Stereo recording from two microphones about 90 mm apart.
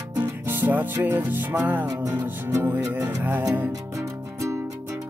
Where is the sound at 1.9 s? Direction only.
40° right (ahead or behind).